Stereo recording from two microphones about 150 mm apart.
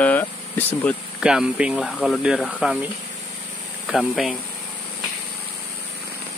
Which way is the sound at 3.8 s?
Centre (ahead or behind).